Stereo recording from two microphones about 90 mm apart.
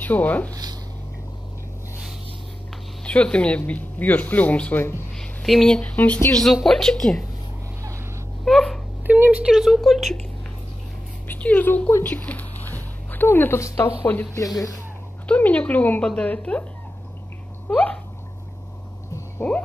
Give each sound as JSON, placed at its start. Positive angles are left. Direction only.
{"t": 0.0, "sound": "speech", "side_deg": 20}
{"t": 3.0, "sound": "speech", "side_deg": 10}
{"t": 5.1, "sound": "speech", "side_deg": 5}
{"t": 6.3, "sound": "speech", "side_deg": 5}
{"t": 8.5, "sound": "wail", "side_deg": 5}
{"t": 9.0, "sound": "speech", "side_deg": -20}
{"t": 11.2, "sound": "speech", "side_deg": 20}
{"t": 15.2, "sound": "speech", "side_deg": 15}
{"t": 19.4, "sound": "music", "side_deg": 20}